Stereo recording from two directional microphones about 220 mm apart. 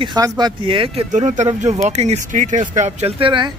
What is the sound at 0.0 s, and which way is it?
Speech, 20° right (ahead or behind).